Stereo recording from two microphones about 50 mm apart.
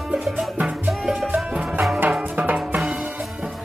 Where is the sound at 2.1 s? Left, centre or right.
Right.